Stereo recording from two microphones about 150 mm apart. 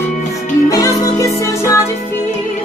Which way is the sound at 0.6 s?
20° left (ahead or behind).